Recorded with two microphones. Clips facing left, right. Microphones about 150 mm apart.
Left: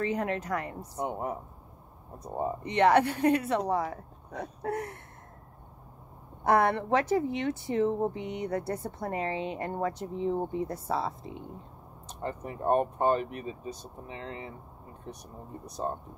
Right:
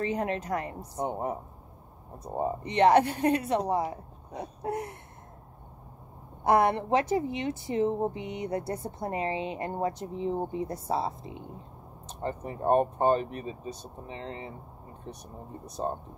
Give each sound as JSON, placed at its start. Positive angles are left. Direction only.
{"t": 0.0, "sound": "speech", "side_deg": -25}
{"t": 6.4, "sound": "speech", "side_deg": -15}
{"t": 15.6, "sound": "speech", "side_deg": -25}